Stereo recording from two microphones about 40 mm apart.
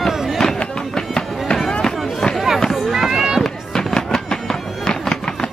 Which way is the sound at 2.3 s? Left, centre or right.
Centre.